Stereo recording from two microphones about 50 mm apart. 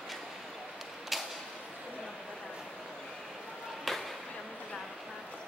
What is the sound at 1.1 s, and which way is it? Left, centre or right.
Creak, centre.